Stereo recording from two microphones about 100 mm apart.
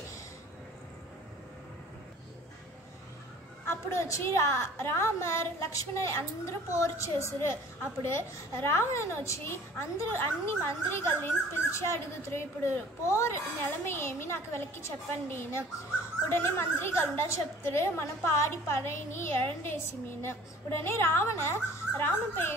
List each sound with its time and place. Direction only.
3.6 s a woman's voice: 25° left (ahead or behind)
13.8 s a woman's voice: 25° left (ahead or behind)